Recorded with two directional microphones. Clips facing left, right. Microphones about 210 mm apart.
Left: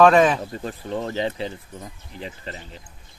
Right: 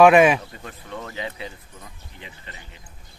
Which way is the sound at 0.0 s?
10° right (ahead or behind).